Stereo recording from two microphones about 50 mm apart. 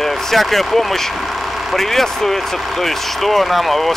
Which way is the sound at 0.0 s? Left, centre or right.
Centre.